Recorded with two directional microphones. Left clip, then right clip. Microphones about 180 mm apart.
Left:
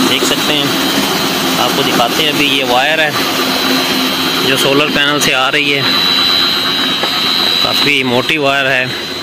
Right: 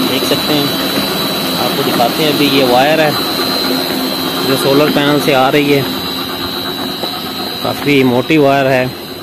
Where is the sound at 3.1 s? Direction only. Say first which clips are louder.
Left 1 dB; 20° right (ahead or behind).